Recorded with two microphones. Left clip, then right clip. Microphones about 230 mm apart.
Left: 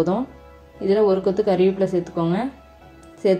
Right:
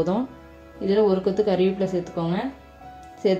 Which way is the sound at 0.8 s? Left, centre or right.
Left.